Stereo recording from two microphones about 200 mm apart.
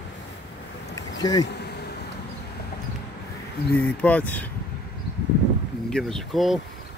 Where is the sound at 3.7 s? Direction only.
10° left (ahead or behind).